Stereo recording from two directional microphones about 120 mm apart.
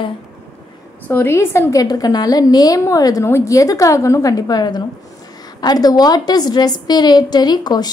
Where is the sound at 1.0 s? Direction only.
20° left (ahead or behind).